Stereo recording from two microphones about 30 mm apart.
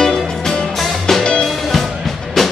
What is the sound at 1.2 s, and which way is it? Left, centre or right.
Music, left.